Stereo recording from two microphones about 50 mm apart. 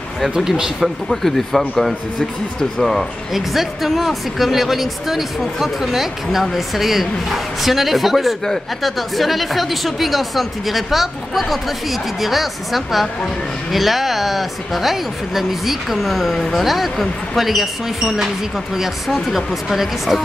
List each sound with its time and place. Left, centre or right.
0.4 s speech: centre
1.0 s a woman's voice: centre
2.8 s a woman's voice: centre